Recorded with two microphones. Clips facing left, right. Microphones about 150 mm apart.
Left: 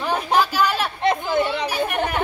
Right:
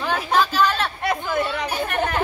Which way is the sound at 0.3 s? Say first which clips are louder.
Even; 10° left (ahead or behind).